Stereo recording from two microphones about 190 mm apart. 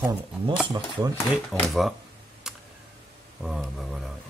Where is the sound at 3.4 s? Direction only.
Centre (ahead or behind).